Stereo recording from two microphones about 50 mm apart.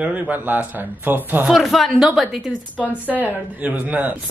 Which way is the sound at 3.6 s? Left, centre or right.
Right.